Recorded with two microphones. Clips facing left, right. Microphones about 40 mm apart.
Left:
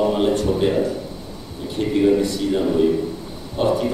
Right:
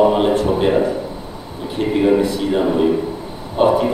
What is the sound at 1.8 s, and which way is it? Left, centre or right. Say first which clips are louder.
A man's voice: right 2 dB; right.